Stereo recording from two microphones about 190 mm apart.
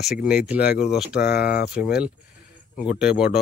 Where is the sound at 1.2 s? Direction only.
55° left (ahead or behind).